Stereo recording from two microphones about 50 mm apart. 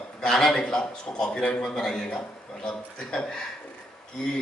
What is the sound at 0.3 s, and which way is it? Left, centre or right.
A man's voice, centre.